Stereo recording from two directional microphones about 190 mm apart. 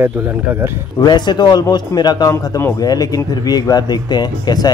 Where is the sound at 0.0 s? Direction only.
10° right (ahead or behind).